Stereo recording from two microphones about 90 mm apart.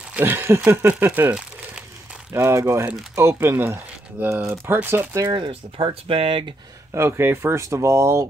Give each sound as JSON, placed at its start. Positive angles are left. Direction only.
{"t": 0.1, "sound": "speech", "side_deg": -25}
{"t": 2.3, "sound": "speech", "side_deg": -30}
{"t": 5.3, "sound": "speech", "side_deg": -65}
{"t": 6.9, "sound": "speech", "side_deg": -30}